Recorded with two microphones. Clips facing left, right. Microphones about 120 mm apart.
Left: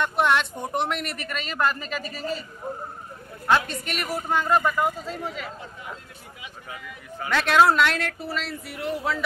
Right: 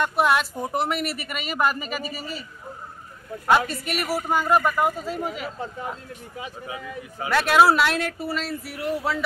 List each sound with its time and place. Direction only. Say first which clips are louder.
0.0 s a man's voice: right 1 dB; 5° right (ahead or behind)
3.4 s a man's voice: right 2 dB; 10° right (ahead or behind)
6.4 s speech: right 5 dB; 35° right (ahead or behind)
7.2 s speech: right 1 dB; 5° right (ahead or behind)